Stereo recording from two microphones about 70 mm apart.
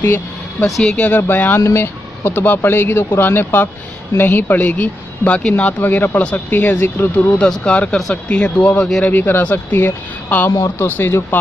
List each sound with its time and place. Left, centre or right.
0.0 s speech: left
1.6 s speech: left
7.3 s speech: centre; by 11.1 s left